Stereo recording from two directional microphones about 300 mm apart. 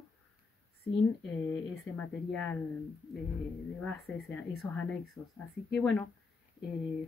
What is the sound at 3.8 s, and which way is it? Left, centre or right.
Speech, centre.